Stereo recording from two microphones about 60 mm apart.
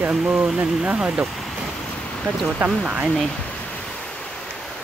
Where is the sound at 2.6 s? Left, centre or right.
Right.